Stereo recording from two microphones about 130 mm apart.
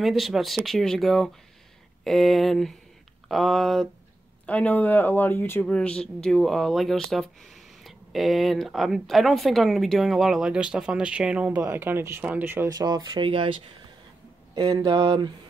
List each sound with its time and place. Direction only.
0.0 s speech: centre (ahead or behind); by 12.7 s 15° right (ahead or behind)
12.7 s speech: 30° right (ahead or behind)
14.5 s speech: 30° right (ahead or behind)